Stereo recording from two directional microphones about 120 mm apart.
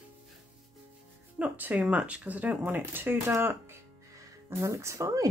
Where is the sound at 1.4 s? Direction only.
10° right (ahead or behind).